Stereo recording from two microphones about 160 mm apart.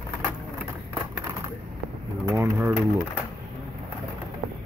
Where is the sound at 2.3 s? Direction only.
10° right (ahead or behind).